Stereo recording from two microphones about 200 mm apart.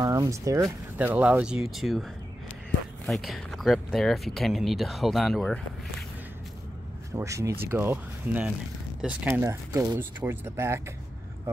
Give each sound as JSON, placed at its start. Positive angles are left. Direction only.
{"t": 0.0, "sound": "speech", "side_deg": -15}
{"t": 3.1, "sound": "speech", "side_deg": 0}
{"t": 7.2, "sound": "speech", "side_deg": -15}